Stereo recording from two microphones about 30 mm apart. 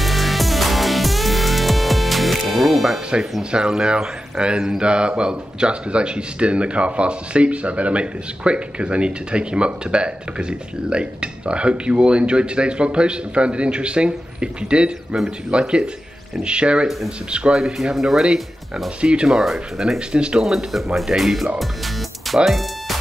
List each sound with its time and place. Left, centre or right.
0.0 s music: centre
3.5 s a man's voice: right
17.6 s speech: centre
18.9 s a man's voice: right
19.3 s speech: centre
20.1 s a man's voice: right
20.4 s speech: centre